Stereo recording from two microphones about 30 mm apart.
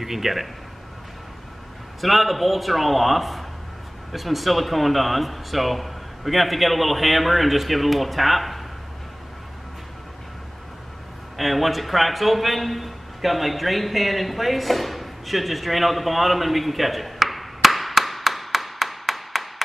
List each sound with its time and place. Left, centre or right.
0.0 s speech: centre
2.0 s speech: centre
11.3 s a man's voice: centre